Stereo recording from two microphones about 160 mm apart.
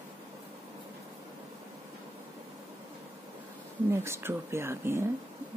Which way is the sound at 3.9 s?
15° right (ahead or behind).